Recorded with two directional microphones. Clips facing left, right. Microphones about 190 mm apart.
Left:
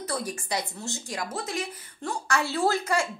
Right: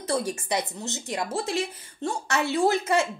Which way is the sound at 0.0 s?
25° right (ahead or behind).